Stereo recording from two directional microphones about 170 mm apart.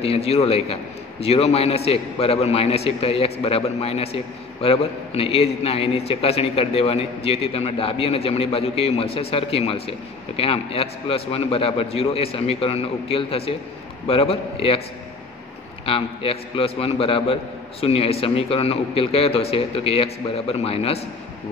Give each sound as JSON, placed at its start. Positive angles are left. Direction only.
{"t": 0.0, "sound": "a man's voice", "side_deg": 35}
{"t": 15.8, "sound": "a man's voice", "side_deg": 35}